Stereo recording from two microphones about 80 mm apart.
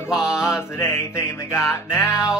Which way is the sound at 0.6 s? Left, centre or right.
Left.